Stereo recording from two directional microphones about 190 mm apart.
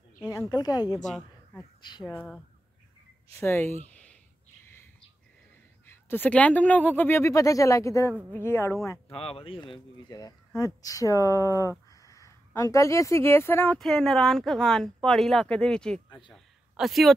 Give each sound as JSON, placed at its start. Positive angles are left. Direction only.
{"t": 0.3, "sound": "speech", "side_deg": 20}
{"t": 3.3, "sound": "speech", "side_deg": 15}
{"t": 3.9, "sound": "a sound", "side_deg": 5}
{"t": 5.9, "sound": "speech", "side_deg": 10}
{"t": 9.1, "sound": "speech", "side_deg": 30}
{"t": 16.1, "sound": "speech", "side_deg": 25}
{"t": 16.7, "sound": "speech", "side_deg": 0}